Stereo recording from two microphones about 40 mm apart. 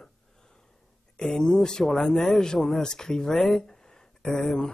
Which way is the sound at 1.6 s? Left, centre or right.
Centre.